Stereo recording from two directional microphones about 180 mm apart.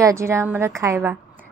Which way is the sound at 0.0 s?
15° right (ahead or behind).